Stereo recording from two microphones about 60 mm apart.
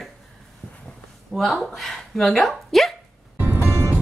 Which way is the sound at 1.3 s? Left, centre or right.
Centre.